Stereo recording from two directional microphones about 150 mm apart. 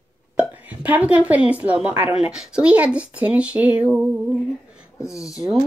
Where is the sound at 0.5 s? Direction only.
10° right (ahead or behind).